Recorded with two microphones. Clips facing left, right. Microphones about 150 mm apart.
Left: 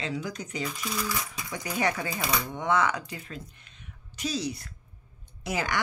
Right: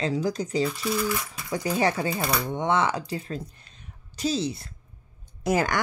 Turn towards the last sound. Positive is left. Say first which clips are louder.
# right 7 dB
turn(degrees=-45)  # may be behind; listen again after turning